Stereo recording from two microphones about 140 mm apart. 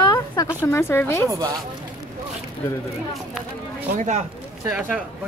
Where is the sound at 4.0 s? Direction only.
60° right (ahead or behind).